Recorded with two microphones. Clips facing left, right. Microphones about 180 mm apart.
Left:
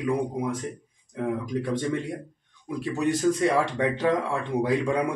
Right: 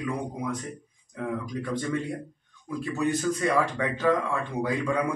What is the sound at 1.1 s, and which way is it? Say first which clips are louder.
Speech: left 4 dB; 25° left (ahead or behind).